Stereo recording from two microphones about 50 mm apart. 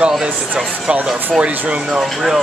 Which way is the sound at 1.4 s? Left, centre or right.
Right.